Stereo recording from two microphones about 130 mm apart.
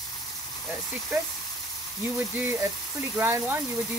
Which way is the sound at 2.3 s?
15° right (ahead or behind).